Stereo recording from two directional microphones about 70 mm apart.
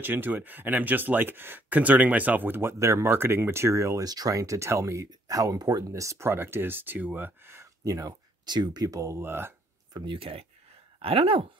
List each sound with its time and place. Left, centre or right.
0.0 s speech: right
4.0 s speech: right
7.8 s speech: right
8.5 s speech: right
9.2 s speech: right
9.9 s speech: right